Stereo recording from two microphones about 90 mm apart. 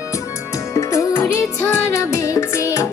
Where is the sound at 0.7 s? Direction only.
35° left (ahead or behind).